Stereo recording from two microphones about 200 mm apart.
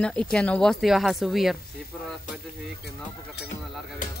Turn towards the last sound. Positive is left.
turn(degrees=40)  # may be behind; listen again after turning